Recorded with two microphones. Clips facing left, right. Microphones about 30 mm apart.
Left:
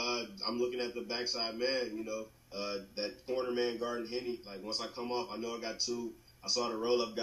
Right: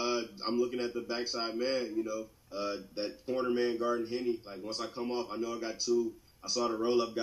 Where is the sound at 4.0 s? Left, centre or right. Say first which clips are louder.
Right 5 dB; left.